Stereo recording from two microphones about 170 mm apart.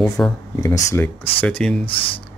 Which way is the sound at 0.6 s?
15° left (ahead or behind).